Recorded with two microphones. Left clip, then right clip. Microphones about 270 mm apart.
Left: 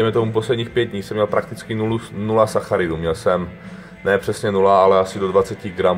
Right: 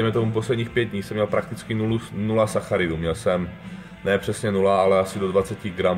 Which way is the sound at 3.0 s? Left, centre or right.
Centre.